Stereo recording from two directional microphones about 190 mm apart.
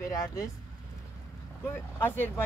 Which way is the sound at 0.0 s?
15° left (ahead or behind).